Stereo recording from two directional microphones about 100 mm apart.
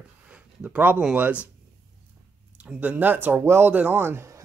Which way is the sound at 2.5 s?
15° right (ahead or behind).